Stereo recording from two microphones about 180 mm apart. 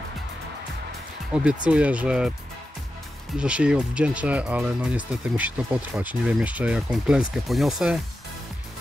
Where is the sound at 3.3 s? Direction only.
5° right (ahead or behind).